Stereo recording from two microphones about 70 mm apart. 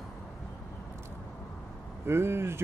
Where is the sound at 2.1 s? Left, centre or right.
Right.